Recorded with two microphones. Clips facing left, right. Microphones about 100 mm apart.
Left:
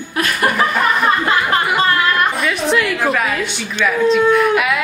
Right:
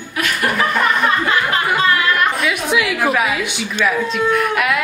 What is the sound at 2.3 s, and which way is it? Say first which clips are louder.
A woman's voice: left 1 dB; 5° right (ahead or behind).